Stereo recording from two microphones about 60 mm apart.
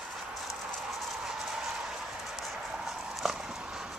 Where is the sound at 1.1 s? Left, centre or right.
Centre.